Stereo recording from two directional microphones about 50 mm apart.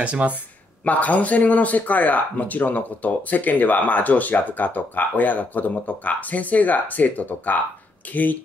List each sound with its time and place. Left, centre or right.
0.0 s speech: right
0.8 s speech: left